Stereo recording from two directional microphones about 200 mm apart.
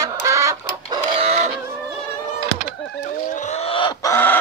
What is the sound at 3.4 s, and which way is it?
Chicken, 35° left (ahead or behind).